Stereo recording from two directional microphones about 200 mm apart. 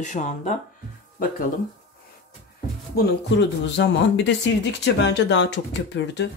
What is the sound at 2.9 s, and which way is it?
Speech, 60° left (ahead or behind).